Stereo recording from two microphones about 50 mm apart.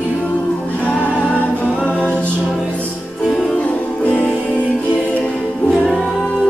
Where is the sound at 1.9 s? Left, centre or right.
Left.